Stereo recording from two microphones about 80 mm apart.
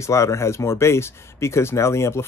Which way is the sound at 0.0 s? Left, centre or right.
Left.